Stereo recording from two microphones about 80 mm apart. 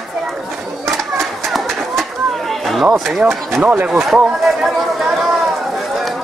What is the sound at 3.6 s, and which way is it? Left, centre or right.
Speech, centre.